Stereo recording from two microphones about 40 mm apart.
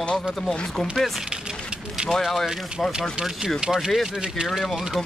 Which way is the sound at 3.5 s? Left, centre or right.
Centre.